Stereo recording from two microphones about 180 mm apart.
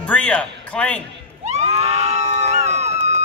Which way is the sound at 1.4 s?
35° right (ahead or behind).